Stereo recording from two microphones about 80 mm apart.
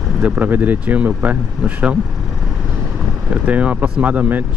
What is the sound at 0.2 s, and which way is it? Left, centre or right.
Speech, right.